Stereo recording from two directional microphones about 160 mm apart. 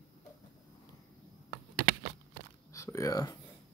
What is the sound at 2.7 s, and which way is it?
Speech, 20° left (ahead or behind).